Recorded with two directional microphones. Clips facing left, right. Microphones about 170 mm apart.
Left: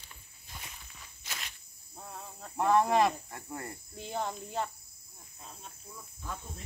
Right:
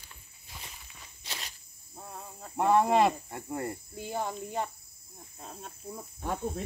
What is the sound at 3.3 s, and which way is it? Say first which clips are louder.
Cricket: right 6 dB; 25° right (ahead or behind).